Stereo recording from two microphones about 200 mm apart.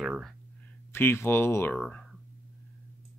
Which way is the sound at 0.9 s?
10° left (ahead or behind).